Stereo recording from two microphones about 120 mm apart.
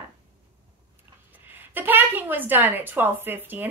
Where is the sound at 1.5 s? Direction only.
15° right (ahead or behind).